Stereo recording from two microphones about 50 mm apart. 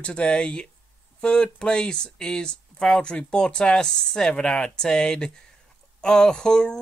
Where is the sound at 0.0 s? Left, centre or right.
Left.